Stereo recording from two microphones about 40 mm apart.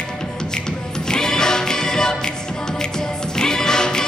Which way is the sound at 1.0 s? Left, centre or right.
Centre.